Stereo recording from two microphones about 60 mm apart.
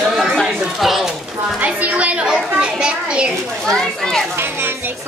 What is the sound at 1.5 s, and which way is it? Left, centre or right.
A woman's voice, right.